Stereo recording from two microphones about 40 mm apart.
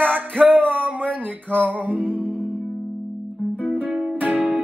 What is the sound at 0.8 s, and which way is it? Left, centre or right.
Music, right.